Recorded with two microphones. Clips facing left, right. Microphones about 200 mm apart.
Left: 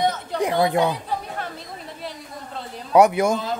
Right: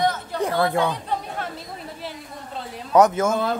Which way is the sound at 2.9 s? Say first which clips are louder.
Left 1 dB; 10° left (ahead or behind).